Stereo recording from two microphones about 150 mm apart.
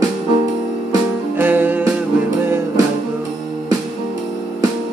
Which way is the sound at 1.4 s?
10° right (ahead or behind).